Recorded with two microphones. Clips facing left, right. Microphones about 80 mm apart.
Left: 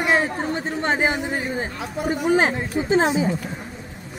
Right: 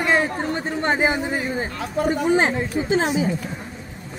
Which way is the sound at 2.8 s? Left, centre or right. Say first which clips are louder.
Left 3 dB; left.